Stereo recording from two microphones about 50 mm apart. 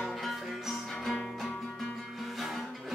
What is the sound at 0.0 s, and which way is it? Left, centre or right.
Music, centre.